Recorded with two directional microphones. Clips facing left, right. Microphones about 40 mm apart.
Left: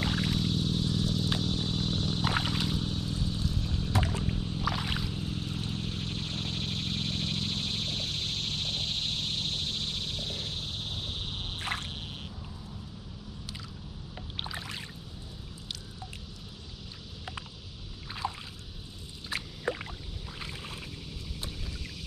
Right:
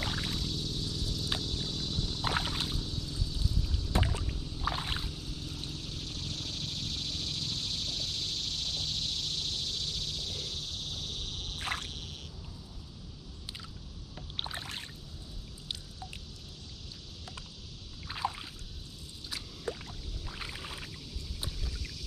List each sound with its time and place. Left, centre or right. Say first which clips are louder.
0.4 s vehicle: left 6 dB; left
1.4 s a sound: left 5 dB; left
2.4 s boat: left 4 dB; left
4.6 s boat: left 1 dB; left
5.1 s vehicle: left 6 dB; left
18.2 s rowboat: right 1 dB; centre
19.2 s a sound: left 5 dB; left
20.2 s boat: even; centre